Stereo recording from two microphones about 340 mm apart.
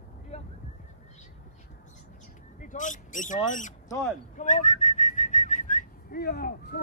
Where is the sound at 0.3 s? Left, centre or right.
Centre.